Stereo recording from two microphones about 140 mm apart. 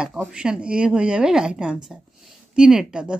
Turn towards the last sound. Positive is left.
turn(degrees=-5)  # may be behind; listen again after turning